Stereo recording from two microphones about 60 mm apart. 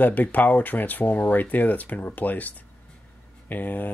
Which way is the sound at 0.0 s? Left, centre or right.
Left.